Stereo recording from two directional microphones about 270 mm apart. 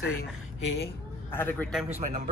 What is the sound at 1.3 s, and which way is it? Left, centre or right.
Speech, centre.